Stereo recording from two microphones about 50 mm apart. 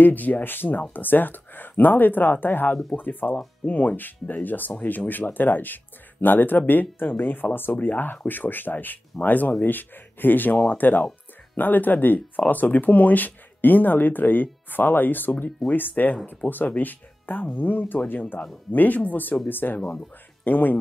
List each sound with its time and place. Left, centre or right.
0.0 s speech: left